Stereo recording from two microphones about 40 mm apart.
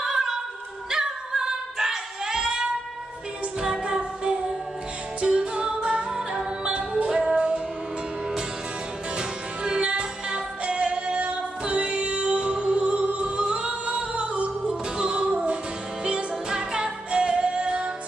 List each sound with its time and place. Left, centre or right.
0.0 s a sound: centre
0.8 s singing: centre
3.6 s music: centre
9.1 s music: right